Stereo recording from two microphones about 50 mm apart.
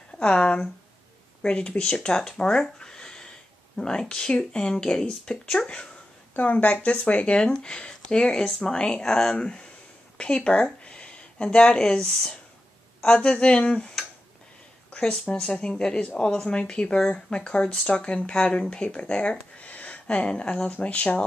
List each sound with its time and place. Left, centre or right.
0.2 s speech: centre
2.6 s a sound: centre
3.7 s speech: centre
6.3 s speech: left
10.1 s a sound: left
11.5 s speech: centre